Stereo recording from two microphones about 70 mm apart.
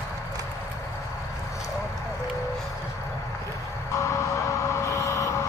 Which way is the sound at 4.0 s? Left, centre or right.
Left.